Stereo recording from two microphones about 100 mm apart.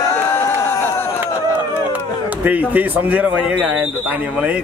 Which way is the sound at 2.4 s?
15° right (ahead or behind).